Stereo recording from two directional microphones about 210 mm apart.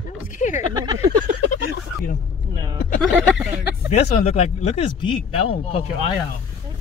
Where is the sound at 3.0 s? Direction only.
5° right (ahead or behind).